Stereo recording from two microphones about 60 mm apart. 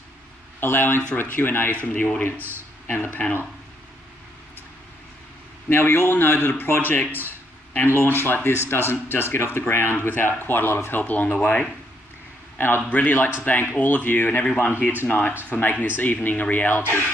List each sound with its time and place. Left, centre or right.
0.6 s speech: left
1.9 s speech: left
5.7 s speech: left
11.0 s speech: left
12.5 s a man's voice: left